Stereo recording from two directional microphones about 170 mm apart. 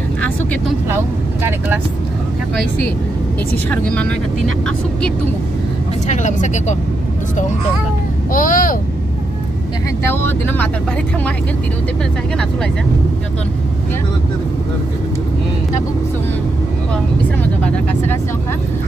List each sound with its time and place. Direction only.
0.8 s speech: 15° right (ahead or behind)
3.7 s speech: 10° left (ahead or behind)
6.0 s speech: 45° left (ahead or behind)
8.3 s speech: 55° left (ahead or behind)
10.0 s speech: 15° left (ahead or behind)
17.4 s speech: 10° left (ahead or behind)